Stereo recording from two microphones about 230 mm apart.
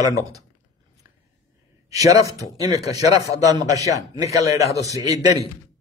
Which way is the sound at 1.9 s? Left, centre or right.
Centre.